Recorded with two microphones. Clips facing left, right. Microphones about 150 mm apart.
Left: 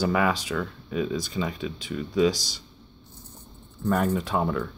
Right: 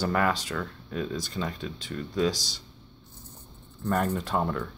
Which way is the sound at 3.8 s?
5° left (ahead or behind).